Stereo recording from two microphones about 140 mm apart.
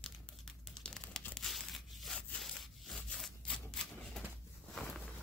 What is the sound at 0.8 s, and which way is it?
Crumpling, 5° left (ahead or behind).